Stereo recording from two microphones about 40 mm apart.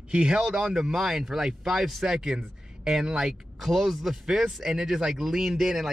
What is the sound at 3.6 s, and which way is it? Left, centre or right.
Speech, centre.